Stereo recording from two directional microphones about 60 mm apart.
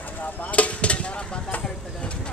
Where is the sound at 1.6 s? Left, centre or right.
Centre.